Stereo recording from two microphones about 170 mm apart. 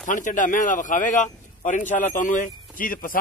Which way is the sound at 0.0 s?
50° left (ahead or behind).